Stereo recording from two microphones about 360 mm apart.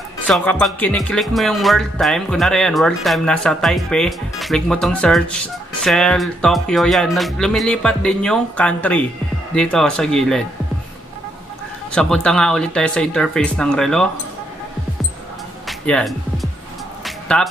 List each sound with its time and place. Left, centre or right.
0.3 s speech: centre
11.9 s speech: centre
15.6 s music: centre